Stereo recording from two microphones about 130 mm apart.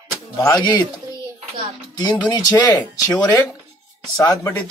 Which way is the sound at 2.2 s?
30° left (ahead or behind).